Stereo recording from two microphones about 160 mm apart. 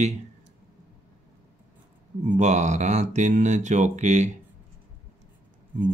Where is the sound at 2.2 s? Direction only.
50° right (ahead or behind).